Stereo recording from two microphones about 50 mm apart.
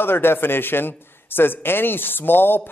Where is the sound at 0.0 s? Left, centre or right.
Left.